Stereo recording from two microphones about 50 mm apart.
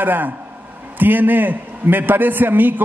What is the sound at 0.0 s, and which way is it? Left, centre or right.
A man's voice, right.